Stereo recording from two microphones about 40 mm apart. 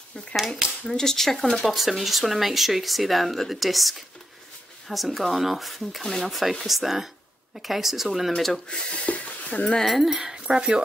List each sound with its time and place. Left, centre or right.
0.8 s speech: centre
1.6 s speech: centre
8.6 s speech: left
10.0 s speech: centre
10.5 s speech: right